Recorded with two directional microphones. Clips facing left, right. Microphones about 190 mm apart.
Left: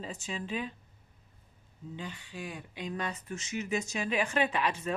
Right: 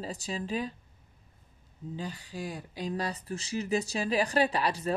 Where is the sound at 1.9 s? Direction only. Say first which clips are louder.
Right 4 dB; 35° right (ahead or behind).